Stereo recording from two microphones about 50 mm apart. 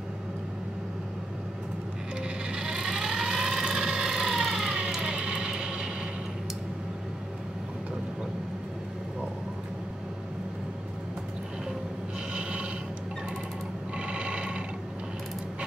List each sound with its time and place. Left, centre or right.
2.2 s vehicle: centre
4.7 s music: centre
12.4 s filing: right
13.9 s mechanisms: right